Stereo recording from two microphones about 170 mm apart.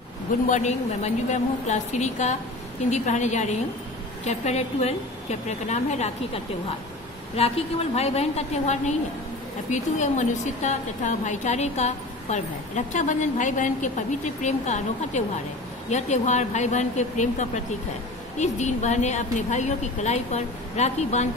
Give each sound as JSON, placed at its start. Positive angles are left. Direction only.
{"t": 0.5, "sound": "a woman's voice", "side_deg": 45}